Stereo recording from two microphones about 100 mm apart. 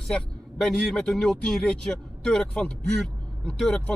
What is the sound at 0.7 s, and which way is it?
Speech, 5° left (ahead or behind).